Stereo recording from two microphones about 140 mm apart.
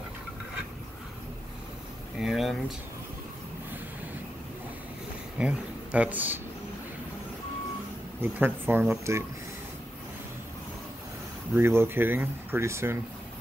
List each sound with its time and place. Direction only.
2.1 s speech: centre (ahead or behind)
5.4 s speech: 5° right (ahead or behind)
8.2 s speech: 15° right (ahead or behind)
11.5 s speech: 15° right (ahead or behind)